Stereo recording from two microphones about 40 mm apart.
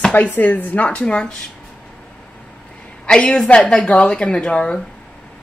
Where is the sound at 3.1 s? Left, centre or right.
Left.